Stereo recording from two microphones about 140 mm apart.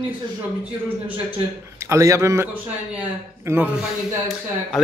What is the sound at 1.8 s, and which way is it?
A man's voice, 20° right (ahead or behind).